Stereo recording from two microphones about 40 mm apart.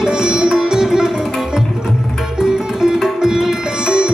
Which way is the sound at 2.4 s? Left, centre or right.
Centre.